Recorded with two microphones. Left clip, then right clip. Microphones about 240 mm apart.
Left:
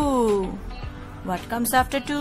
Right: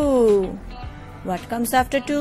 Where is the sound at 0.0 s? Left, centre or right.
Centre.